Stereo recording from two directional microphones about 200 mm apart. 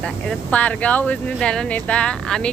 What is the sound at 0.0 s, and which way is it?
A woman's voice, 5° left (ahead or behind).